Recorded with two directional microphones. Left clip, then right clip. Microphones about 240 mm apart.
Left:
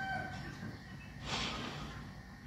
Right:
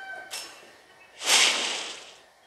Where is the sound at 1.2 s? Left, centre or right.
Right.